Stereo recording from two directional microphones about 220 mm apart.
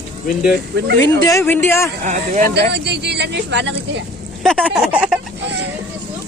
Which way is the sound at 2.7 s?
50° right (ahead or behind).